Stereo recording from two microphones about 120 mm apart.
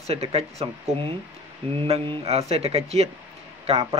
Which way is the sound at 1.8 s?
60° right (ahead or behind).